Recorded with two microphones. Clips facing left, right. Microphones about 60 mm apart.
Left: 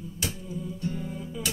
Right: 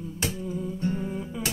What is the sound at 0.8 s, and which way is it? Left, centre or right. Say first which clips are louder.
Music: right 5 dB; right.